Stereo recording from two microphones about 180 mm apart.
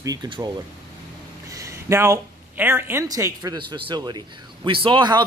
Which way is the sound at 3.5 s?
25° right (ahead or behind).